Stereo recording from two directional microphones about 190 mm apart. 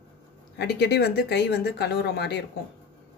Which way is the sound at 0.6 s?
60° left (ahead or behind).